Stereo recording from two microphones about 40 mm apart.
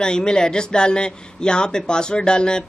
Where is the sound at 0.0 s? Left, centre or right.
Centre.